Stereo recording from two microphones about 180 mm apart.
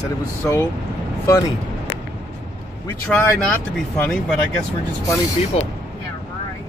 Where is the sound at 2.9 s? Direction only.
5° left (ahead or behind).